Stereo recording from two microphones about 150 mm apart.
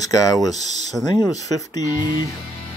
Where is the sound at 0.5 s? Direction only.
50° right (ahead or behind).